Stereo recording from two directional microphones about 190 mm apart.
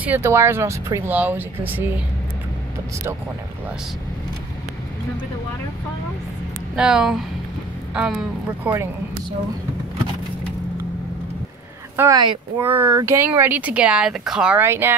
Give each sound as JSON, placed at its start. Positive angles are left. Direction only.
{"t": 0.0, "sound": "speech", "side_deg": -10}
{"t": 6.7, "sound": "speech", "side_deg": -5}
{"t": 12.0, "sound": "speech", "side_deg": -20}